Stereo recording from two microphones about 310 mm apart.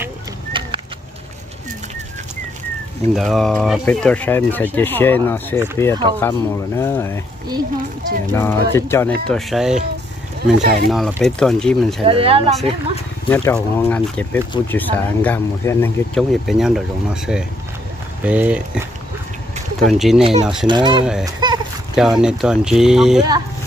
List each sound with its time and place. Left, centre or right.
0.0 s a sound: centre
3.2 s speech: centre
8.3 s speech: centre
10.6 s speech: right
10.9 s speech: centre
12.0 s speech: centre
13.3 s speech: centre
20.6 s speech: centre
21.0 s speech: centre